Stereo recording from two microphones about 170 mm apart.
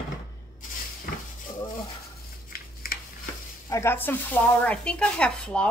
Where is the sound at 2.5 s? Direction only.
60° left (ahead or behind).